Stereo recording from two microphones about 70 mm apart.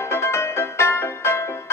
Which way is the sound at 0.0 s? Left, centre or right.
Left.